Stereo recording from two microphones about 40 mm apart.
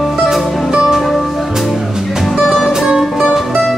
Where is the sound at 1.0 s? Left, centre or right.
Centre.